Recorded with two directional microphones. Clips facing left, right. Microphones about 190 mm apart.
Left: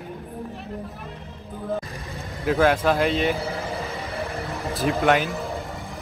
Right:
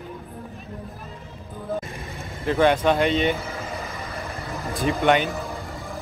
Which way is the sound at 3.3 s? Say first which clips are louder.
Left 3 dB; 35° left (ahead or behind).